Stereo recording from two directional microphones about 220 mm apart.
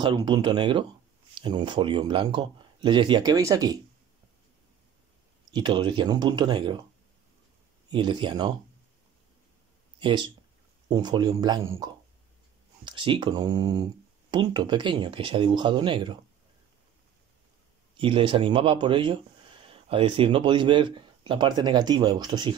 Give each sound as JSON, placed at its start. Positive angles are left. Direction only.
{"t": 0.0, "sound": "speech", "side_deg": -20}
{"t": 5.5, "sound": "speech", "side_deg": -20}
{"t": 7.9, "sound": "speech", "side_deg": -20}
{"t": 9.9, "sound": "speech", "side_deg": -20}
{"t": 17.9, "sound": "speech", "side_deg": -25}